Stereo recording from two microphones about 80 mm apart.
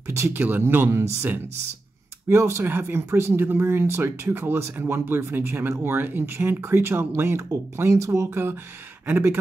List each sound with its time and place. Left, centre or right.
0.0 s speech: right